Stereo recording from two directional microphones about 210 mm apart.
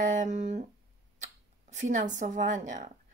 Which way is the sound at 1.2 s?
35° right (ahead or behind).